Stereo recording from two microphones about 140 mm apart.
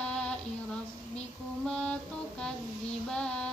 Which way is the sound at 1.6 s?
5° left (ahead or behind).